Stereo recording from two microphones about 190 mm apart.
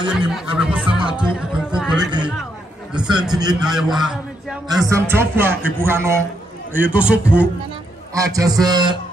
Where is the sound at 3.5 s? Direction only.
Centre (ahead or behind).